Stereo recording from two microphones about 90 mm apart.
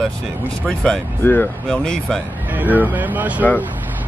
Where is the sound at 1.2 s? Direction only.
25° left (ahead or behind).